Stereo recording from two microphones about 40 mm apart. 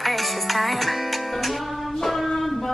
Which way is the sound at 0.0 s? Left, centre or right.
Centre.